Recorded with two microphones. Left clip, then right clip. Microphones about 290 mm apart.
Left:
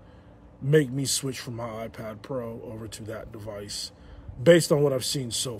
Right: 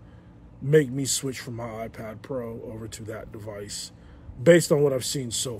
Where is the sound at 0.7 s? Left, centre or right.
Centre.